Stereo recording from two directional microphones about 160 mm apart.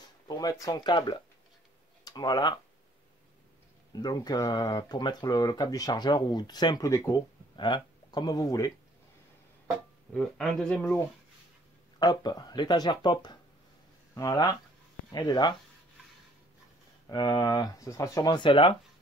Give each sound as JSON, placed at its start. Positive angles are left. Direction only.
{"t": 0.3, "sound": "speech", "side_deg": 25}
{"t": 3.9, "sound": "speech", "side_deg": 25}
{"t": 10.1, "sound": "speech", "side_deg": 5}
{"t": 12.0, "sound": "speech", "side_deg": 25}
{"t": 17.1, "sound": "speech", "side_deg": 25}